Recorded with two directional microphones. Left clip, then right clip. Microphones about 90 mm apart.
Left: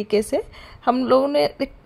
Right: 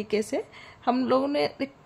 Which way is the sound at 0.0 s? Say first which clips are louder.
Left 7 dB; 40° left (ahead or behind).